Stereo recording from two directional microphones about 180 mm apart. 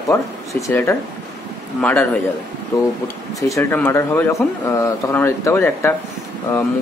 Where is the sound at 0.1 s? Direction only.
15° left (ahead or behind).